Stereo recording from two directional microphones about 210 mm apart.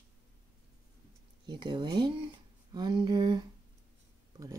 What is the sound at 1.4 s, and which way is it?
Speech, 20° right (ahead or behind).